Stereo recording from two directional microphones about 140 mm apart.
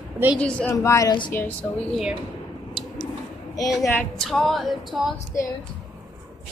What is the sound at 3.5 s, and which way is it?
Speech, 25° left (ahead or behind).